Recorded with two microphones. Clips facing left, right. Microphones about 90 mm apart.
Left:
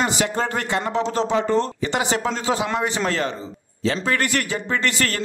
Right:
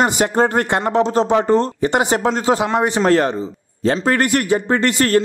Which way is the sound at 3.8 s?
50° right (ahead or behind).